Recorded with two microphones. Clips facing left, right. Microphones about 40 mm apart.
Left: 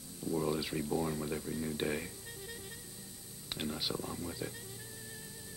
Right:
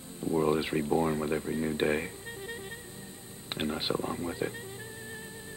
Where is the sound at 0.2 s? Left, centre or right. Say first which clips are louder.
Right 7 dB; right.